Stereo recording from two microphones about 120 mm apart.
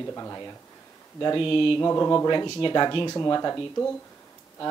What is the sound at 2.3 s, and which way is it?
Speech, 35° left (ahead or behind).